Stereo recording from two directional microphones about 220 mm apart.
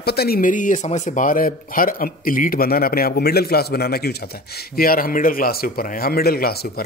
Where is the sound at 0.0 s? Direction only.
45° left (ahead or behind).